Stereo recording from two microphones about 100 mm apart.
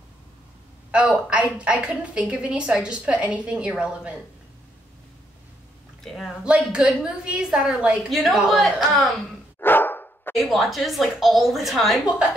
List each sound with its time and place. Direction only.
0.9 s a woman's voice: 10° right (ahead or behind)
6.0 s a woman's voice: centre (ahead or behind)
6.4 s a woman's voice: 10° right (ahead or behind)
9.6 s dog: 20° left (ahead or behind)
10.3 s a woman's voice: centre (ahead or behind)